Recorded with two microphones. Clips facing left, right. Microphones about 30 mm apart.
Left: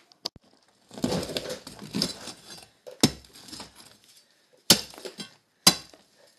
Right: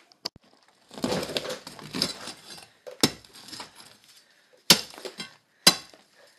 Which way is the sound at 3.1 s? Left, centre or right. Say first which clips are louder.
Right 2 dB; right.